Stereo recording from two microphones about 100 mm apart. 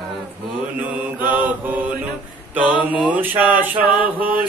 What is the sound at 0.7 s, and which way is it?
Mantra, 15° right (ahead or behind).